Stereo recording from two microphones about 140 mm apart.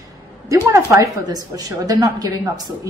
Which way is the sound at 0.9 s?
25° right (ahead or behind).